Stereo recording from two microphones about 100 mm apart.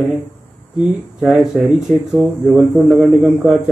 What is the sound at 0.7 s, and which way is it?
Speech, 5° right (ahead or behind).